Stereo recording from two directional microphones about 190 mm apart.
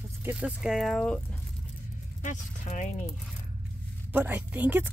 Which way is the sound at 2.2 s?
40° left (ahead or behind).